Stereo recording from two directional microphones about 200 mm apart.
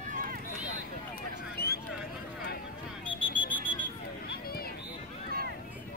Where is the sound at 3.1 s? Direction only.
10° left (ahead or behind).